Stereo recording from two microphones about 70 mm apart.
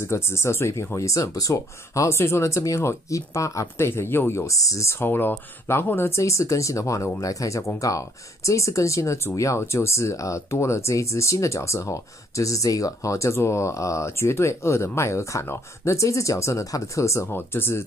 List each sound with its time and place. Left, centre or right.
0.0 s speech: left
2.1 s speech: left
5.0 s speech: left